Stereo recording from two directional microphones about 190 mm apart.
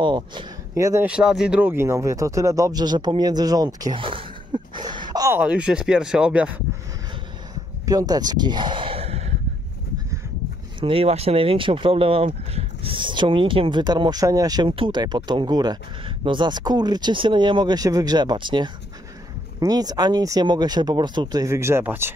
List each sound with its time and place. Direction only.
0.0 s speech: 25° right (ahead or behind)
5.4 s speech: 5° right (ahead or behind)
7.8 s speech: 20° right (ahead or behind); by 9.3 s 35° right (ahead or behind)
10.8 s speech: 30° right (ahead or behind); by 22.1 s 15° right (ahead or behind)